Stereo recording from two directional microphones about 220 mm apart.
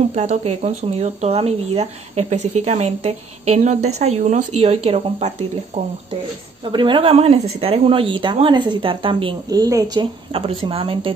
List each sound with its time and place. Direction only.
0.1 s speech: 30° right (ahead or behind)